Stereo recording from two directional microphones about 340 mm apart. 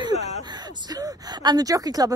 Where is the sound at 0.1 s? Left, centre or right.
Centre.